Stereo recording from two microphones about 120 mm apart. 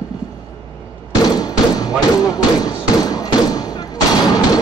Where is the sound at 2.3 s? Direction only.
30° left (ahead or behind).